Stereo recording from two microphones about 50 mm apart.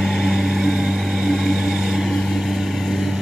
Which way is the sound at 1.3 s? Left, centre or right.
Centre.